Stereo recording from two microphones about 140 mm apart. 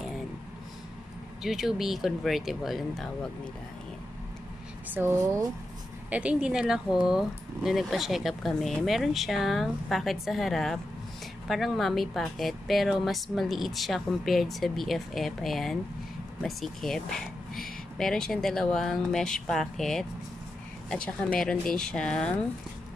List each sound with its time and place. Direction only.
1.4 s speech: 5° right (ahead or behind)
4.9 s speech: 20° right (ahead or behind)
6.0 s speech: 10° right (ahead or behind); by 22.3 s 5° left (ahead or behind)